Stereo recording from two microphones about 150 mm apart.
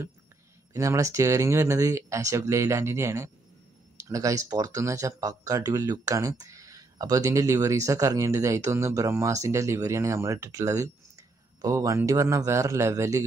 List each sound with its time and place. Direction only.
0.7 s speech: 20° right (ahead or behind)